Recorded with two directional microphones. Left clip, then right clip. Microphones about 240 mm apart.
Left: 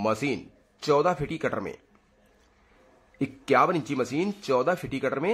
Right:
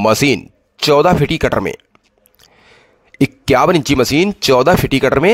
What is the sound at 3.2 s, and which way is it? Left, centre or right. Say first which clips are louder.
Speech: right 10 dB; right.